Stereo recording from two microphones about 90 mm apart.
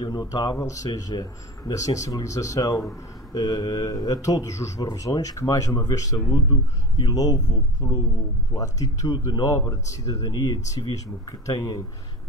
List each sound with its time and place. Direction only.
0.0 s speech: 45° left (ahead or behind)